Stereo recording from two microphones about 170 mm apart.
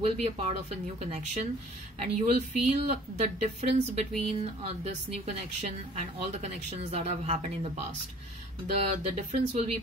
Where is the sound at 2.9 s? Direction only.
40° right (ahead or behind).